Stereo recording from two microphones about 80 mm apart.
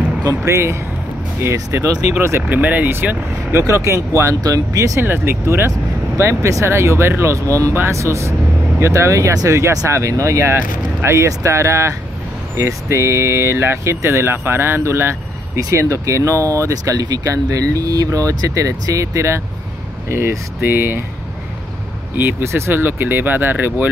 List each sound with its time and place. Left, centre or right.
0.5 s speech: right
2.5 s speech: right
5.0 s speech: right
22.1 s speech: right